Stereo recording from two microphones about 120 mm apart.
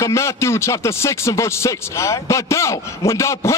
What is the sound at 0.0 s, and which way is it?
A man's voice, 25° left (ahead or behind).